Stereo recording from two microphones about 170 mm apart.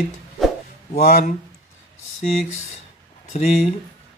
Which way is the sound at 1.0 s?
50° left (ahead or behind).